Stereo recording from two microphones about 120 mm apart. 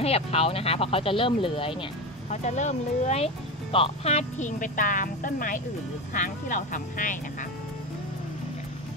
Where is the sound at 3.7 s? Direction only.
55° left (ahead or behind); by 7.2 s 90° left.